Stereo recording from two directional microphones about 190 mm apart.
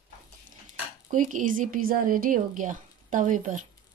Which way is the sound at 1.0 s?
45° right (ahead or behind).